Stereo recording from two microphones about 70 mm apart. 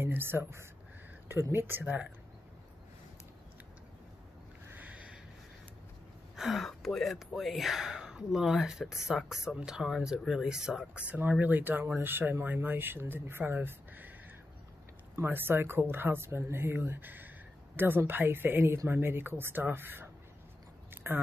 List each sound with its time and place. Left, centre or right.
0.0 s speech: right
4.7 s sniff: right
6.3 s speech: centre; by 14.1 s right
15.2 s speech: right
20.9 s biting: right